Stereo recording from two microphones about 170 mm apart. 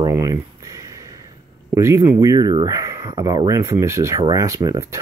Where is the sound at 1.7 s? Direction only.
15° right (ahead or behind).